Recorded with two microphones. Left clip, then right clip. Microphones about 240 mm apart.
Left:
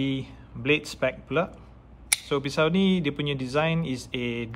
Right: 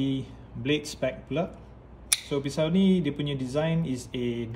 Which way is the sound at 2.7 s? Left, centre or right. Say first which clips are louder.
Left 1 dB; left.